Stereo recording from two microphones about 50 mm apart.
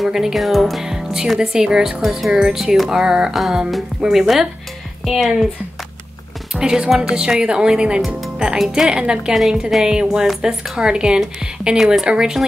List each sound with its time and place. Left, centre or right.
0.0 s speech: centre
6.5 s speech: centre
11.7 s speech: centre